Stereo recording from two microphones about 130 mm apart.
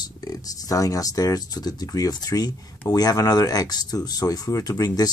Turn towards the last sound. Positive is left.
turn(degrees=30)  # may be behind; listen again after turning